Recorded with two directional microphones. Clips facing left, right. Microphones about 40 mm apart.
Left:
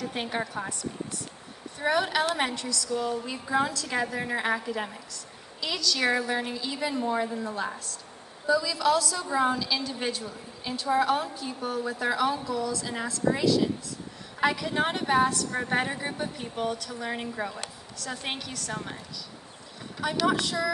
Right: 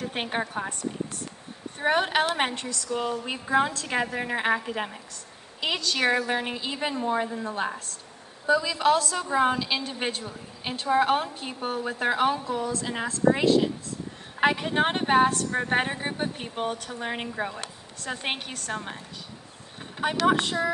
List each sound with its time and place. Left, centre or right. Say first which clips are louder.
0.0 s a woman's voice: right 2 dB; right
7.4 s a woman's voice: right 2 dB; right